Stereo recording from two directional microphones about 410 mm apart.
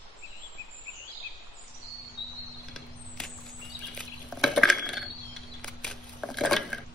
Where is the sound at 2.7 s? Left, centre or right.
Centre.